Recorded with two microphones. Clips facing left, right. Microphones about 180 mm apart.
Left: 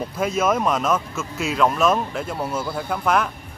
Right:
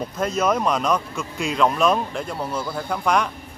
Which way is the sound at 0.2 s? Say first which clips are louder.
Left 1 dB; 5° left (ahead or behind).